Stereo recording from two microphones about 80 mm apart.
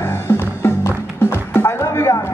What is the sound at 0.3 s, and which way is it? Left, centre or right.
Music, left.